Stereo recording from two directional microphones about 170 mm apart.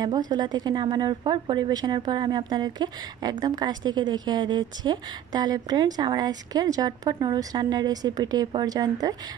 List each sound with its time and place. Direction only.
0.3 s a woman's voice: 25° right (ahead or behind)